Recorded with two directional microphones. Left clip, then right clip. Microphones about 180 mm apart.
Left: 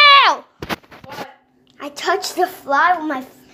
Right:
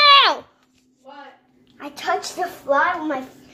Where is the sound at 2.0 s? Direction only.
45° left (ahead or behind).